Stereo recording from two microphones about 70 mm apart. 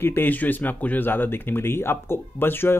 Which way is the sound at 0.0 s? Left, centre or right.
Left.